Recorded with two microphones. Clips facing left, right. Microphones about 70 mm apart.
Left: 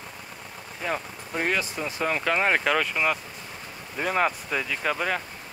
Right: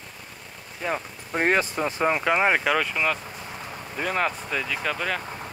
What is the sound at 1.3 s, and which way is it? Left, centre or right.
Speech, right.